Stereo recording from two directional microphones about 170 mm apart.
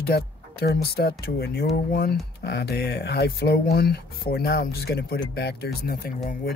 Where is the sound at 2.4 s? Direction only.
80° left.